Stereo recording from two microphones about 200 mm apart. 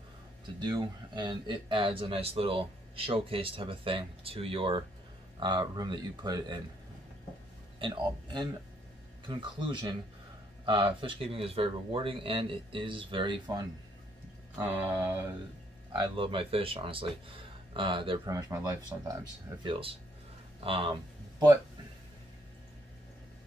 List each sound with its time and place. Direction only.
0.6 s speech: 20° right (ahead or behind)
7.8 s speech: 20° right (ahead or behind)
14.5 s mantra: 10° right (ahead or behind)
15.9 s speech: 25° right (ahead or behind)